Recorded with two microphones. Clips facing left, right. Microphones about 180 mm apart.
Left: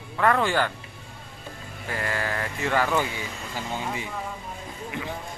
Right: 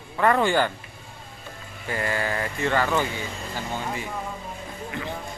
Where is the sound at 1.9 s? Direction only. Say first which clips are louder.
Right 2 dB; centre (ahead or behind).